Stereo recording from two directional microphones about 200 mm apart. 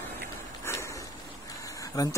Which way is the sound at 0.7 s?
15° left (ahead or behind).